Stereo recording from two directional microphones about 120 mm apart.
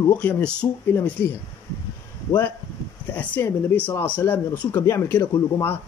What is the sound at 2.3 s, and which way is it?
Speech, 20° left (ahead or behind).